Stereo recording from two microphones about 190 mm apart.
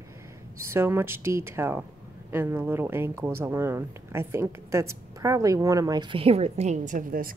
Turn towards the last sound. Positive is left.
turn(degrees=-45)  # may be behind; listen again after turning